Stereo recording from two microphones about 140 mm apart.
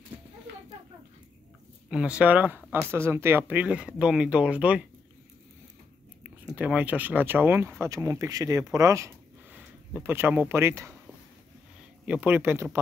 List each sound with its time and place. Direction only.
1.9 s speech: 5° right (ahead or behind)
6.2 s speech: 10° right (ahead or behind)
12.1 s speech: 10° right (ahead or behind)